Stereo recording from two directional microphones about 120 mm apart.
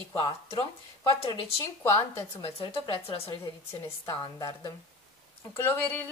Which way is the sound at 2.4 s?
55° left (ahead or behind).